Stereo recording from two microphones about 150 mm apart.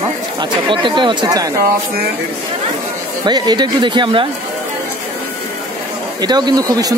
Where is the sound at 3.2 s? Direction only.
30° right (ahead or behind).